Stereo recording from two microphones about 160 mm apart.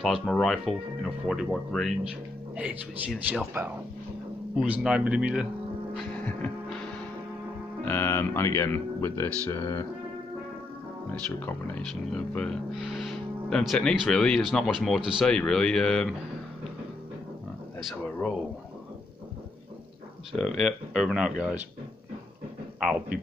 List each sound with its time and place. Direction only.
0.0 s a man's voice: centre (ahead or behind)
4.6 s a man's voice: 5° right (ahead or behind)
5.9 s music: 10° left (ahead or behind)
7.8 s speech: 15° left (ahead or behind)
11.3 s speech: 10° left (ahead or behind)
18.0 s speech: 10° left (ahead or behind)
20.3 s speech: centre (ahead or behind)